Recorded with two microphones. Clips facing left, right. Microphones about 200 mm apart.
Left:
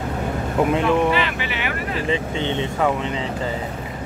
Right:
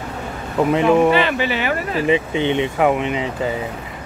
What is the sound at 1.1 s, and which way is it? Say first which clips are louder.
Speech: right 5 dB; 35° right (ahead or behind).